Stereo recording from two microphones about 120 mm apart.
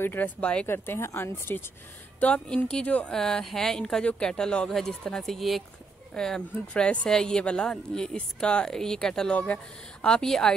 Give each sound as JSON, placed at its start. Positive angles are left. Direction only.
{"t": 0.0, "sound": "speech", "side_deg": 15}
{"t": 0.7, "sound": "a woman's voice", "side_deg": 20}